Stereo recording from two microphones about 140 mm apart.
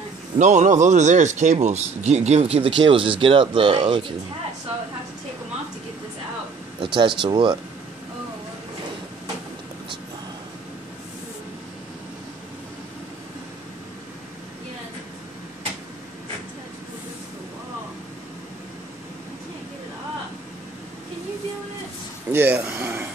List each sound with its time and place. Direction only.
0.4 s speech: 60° right (ahead or behind); by 4.0 s 35° right (ahead or behind)
6.8 s speech: 35° right (ahead or behind)
22.3 s a sound: 15° right (ahead or behind)